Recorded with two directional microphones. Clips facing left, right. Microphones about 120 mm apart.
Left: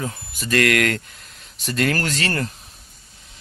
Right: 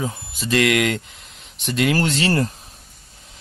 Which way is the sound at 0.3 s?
20° right (ahead or behind).